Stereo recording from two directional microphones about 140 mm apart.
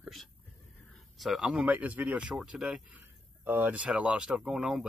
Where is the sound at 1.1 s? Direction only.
Centre (ahead or behind).